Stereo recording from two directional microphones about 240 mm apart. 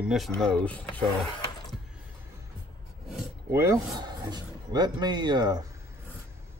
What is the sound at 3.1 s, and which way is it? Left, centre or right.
Speech, centre.